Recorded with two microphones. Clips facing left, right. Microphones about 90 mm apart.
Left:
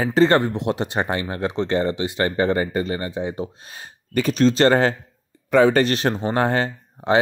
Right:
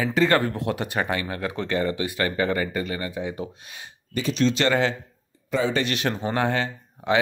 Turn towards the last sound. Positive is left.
turn(degrees=40)  # may be behind; listen again after turning